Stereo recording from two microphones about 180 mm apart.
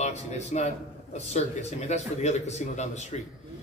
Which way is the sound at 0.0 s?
40° left (ahead or behind).